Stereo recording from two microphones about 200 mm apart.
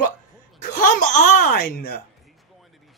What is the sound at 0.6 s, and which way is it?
Speech, 45° left (ahead or behind).